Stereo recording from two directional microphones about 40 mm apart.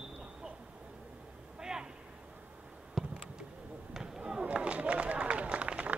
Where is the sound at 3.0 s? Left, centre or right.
Centre.